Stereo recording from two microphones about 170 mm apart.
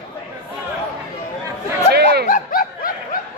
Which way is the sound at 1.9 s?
70° right (ahead or behind).